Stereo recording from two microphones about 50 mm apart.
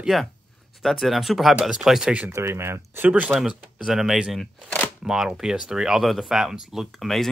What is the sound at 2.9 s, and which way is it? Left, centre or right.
Speech, right.